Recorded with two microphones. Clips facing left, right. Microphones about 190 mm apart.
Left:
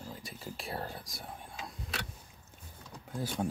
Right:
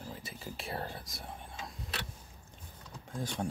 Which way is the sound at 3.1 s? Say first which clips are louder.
Left 2 dB; 5° left (ahead or behind).